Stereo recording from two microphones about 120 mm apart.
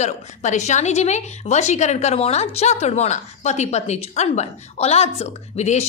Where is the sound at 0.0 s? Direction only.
80° left.